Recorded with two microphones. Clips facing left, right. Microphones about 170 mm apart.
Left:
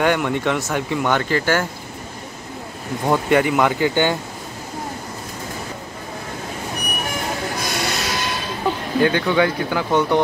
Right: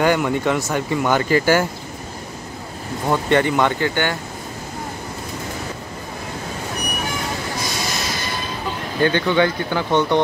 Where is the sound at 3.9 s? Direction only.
15° left (ahead or behind).